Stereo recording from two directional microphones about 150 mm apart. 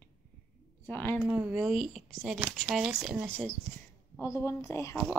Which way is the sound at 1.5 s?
Centre (ahead or behind).